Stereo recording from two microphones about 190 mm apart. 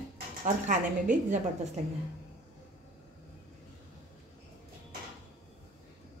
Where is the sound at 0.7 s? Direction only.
40° right (ahead or behind).